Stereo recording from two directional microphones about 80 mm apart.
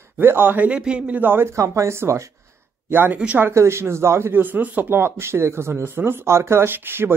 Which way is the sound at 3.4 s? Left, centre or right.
Right.